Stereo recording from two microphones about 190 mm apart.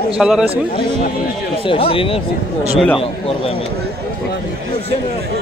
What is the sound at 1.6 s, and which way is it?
Speech, 30° left (ahead or behind).